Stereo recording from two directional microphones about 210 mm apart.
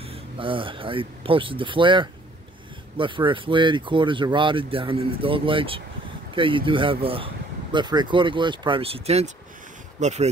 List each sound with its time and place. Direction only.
0.1 s speech: 25° right (ahead or behind)